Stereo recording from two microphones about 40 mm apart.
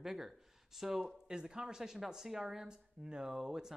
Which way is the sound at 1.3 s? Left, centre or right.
Centre.